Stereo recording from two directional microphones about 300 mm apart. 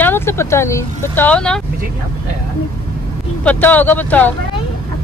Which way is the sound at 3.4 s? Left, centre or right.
Centre.